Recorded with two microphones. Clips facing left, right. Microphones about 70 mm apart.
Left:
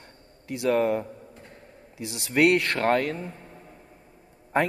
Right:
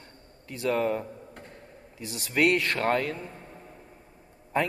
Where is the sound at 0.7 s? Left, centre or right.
Left.